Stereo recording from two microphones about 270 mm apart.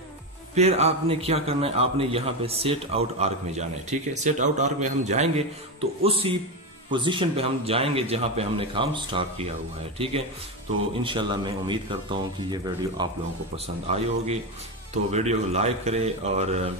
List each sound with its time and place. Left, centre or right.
0.6 s a man's voice: right